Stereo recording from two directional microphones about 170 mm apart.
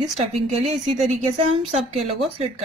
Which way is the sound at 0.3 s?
40° right (ahead or behind).